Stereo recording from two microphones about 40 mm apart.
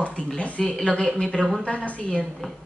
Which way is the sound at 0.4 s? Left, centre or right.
Left.